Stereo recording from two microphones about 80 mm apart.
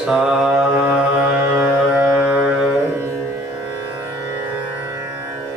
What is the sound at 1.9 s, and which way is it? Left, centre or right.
Music, centre.